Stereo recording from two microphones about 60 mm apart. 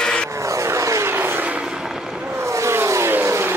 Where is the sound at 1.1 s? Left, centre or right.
Right.